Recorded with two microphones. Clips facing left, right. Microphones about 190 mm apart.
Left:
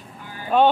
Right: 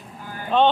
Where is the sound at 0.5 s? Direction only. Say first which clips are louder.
Left 1 dB; 10° left (ahead or behind).